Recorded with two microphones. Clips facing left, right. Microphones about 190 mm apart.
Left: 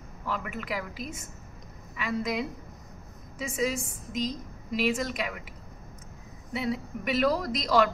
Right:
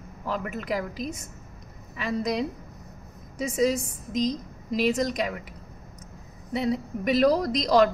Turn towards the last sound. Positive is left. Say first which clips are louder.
# right 4 dB
turn(degrees=-40)  # may be behind; listen again after turning